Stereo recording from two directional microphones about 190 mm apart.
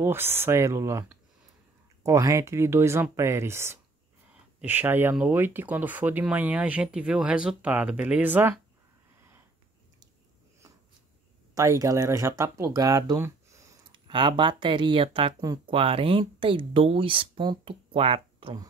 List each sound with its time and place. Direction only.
0.0 s speech: 10° right (ahead or behind)
11.5 s speech: 15° right (ahead or behind)